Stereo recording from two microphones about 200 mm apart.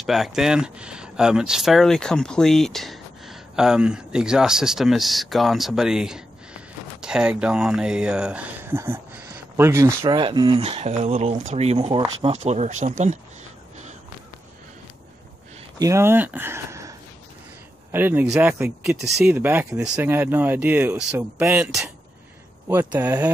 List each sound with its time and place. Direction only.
0.0 s speech: centre (ahead or behind)
10.0 s speech: 25° right (ahead or behind)
15.8 s speech: 15° right (ahead or behind)
17.9 s speech: 10° right (ahead or behind)